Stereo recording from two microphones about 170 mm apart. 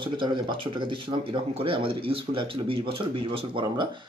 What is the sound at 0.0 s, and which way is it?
Speech, 30° right (ahead or behind).